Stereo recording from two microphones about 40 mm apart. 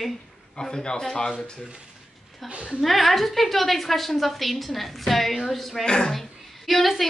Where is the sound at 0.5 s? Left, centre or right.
Centre.